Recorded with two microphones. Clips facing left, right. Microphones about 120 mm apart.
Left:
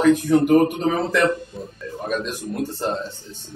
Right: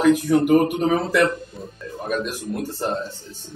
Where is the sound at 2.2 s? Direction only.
15° right (ahead or behind).